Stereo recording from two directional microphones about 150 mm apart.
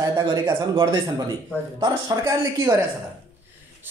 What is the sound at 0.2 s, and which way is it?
Speech, 30° right (ahead or behind).